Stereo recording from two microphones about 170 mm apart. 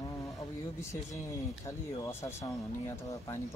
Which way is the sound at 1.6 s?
20° left (ahead or behind).